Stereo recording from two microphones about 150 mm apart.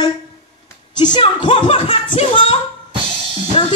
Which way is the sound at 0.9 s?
30° left (ahead or behind).